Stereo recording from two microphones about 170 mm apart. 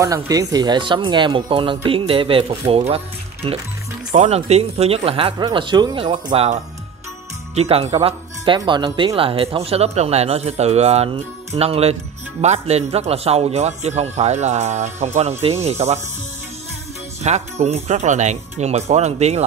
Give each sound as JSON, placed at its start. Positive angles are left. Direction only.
{"t": 0.0, "sound": "speech", "side_deg": -20}
{"t": 17.2, "sound": "speech", "side_deg": -40}